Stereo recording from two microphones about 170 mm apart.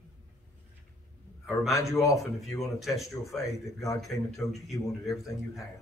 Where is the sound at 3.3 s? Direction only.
20° left (ahead or behind).